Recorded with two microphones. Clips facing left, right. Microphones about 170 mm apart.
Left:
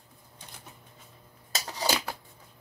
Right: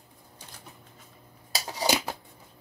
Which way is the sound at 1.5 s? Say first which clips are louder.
Right 3 dB; 20° right (ahead or behind).